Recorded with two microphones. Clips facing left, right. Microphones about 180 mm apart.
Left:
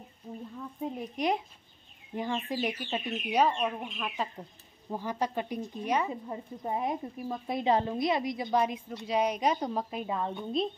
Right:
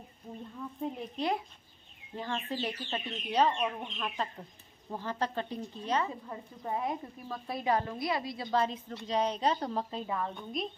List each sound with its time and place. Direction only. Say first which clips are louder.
0.9 s a woman's voice: left 4 dB; 15° left (ahead or behind)